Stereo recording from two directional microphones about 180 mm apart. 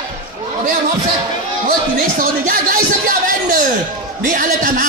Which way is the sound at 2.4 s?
50° right (ahead or behind).